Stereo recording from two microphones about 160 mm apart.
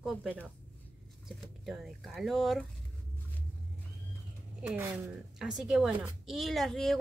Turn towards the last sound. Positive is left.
turn(degrees=0)  # may be behind; listen again after turning